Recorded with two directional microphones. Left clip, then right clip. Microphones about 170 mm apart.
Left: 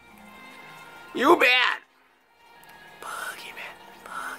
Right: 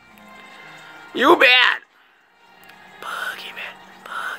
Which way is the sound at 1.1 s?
20° right (ahead or behind).